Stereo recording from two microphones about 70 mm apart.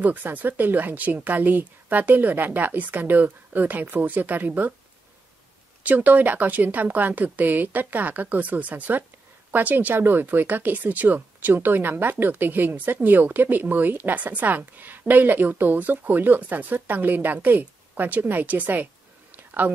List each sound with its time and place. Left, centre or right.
0.0 s speech: right
5.9 s speech: right
19.3 s a sound: right